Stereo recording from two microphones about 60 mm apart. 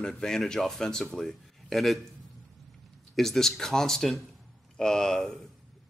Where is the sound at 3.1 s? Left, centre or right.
Centre.